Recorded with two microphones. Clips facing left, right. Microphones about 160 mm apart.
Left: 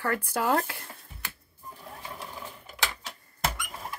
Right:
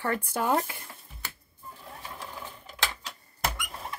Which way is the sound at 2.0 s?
15° left (ahead or behind).